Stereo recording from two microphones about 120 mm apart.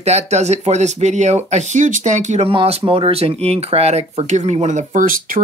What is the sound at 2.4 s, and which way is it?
Speech, 55° right (ahead or behind).